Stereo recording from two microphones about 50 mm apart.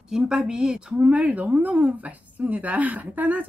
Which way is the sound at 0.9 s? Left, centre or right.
Right.